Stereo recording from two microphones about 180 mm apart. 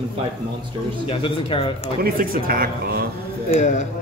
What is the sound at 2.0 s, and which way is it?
Speech, 55° right (ahead or behind).